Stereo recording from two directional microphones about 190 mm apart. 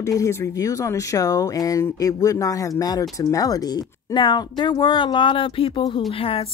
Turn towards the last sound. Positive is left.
turn(degrees=30)  # may be behind; listen again after turning